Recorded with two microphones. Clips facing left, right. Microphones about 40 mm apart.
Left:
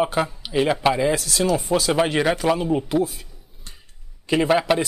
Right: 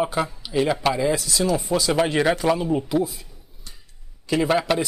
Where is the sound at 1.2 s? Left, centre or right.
Left.